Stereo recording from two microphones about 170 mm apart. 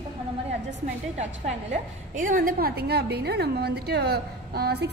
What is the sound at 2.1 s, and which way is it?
A woman's voice, 50° right (ahead or behind).